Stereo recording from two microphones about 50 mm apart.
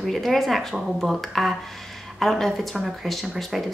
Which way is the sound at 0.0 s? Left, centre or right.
Centre.